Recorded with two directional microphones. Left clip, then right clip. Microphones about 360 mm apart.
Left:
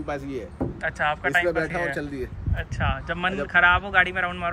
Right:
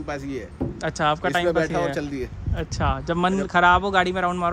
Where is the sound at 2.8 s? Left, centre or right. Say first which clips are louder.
Right 3 dB; centre.